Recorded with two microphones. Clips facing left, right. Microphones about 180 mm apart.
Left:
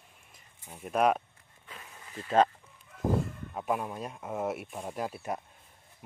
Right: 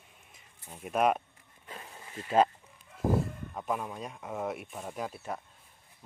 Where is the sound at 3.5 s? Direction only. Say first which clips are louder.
Left 3 dB; 5° left (ahead or behind).